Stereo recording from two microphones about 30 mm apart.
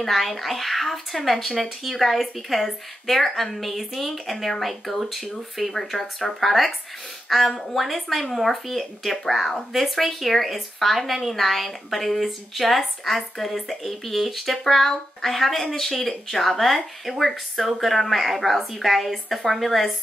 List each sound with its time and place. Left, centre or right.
0.0 s speech: centre